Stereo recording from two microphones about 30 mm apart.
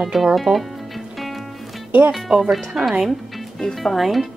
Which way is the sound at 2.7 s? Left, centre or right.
Centre.